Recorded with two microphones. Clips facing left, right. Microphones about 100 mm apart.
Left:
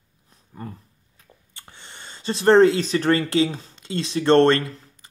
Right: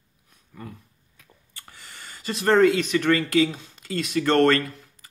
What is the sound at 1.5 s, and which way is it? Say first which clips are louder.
Speech: left 1 dB; 25° left (ahead or behind).